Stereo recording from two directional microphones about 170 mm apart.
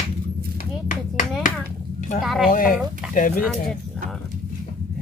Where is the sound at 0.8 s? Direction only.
50° left (ahead or behind).